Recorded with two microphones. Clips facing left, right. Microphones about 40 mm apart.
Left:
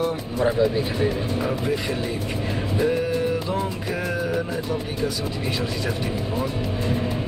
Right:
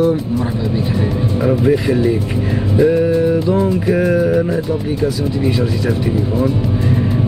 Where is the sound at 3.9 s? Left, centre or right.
Centre.